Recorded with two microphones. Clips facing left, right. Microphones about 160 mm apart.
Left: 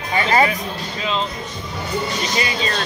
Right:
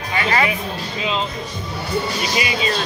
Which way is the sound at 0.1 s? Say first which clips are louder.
Left 3 dB; 30° left (ahead or behind).